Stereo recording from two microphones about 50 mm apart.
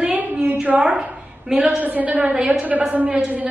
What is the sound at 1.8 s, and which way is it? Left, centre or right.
A woman's voice, right.